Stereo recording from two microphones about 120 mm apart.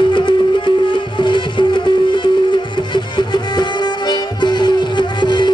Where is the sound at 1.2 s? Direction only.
40° left (ahead or behind).